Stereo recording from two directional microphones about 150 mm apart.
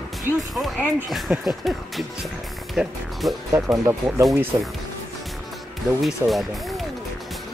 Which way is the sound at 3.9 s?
20° right (ahead or behind).